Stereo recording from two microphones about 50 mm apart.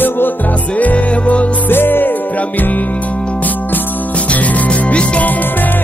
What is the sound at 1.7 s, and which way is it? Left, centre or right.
Music, left.